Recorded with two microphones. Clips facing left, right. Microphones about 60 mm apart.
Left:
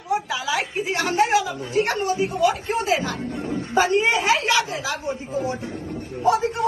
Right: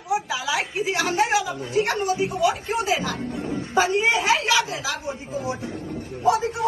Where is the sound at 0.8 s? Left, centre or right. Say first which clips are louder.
Left 2 dB; left.